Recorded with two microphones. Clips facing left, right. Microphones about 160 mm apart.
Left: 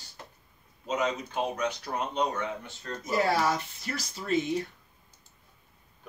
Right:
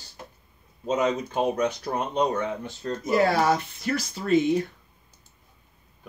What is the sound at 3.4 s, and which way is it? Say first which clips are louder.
Speech: right 5 dB; 60° right (ahead or behind).